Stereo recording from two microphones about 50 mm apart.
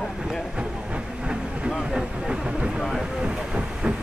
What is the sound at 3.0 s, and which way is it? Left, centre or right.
Train, centre.